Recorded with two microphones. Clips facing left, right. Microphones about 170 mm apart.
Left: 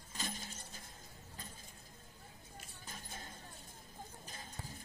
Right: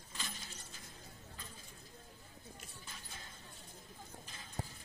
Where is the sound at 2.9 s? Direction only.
45° left (ahead or behind).